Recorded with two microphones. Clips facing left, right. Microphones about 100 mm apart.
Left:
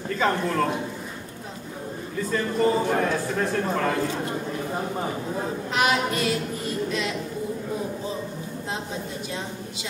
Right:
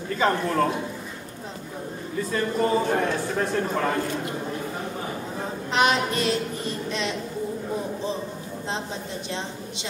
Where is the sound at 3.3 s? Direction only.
5° right (ahead or behind).